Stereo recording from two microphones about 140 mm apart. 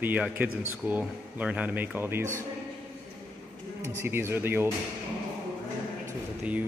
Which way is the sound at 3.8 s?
15° right (ahead or behind).